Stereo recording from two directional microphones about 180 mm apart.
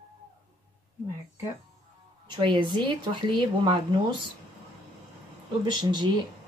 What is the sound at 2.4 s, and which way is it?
Speech, 25° right (ahead or behind).